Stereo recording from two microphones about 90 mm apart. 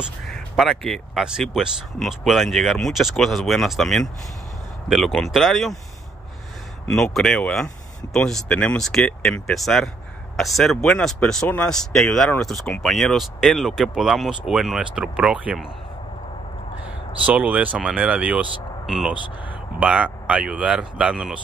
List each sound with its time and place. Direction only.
0.3 s speech: centre (ahead or behind)
7.0 s speech: 5° left (ahead or behind)
11.4 s speech: 15° left (ahead or behind)
11.7 s speech: 5° left (ahead or behind); by 15.6 s 10° right (ahead or behind)
17.3 s speech: 15° right (ahead or behind)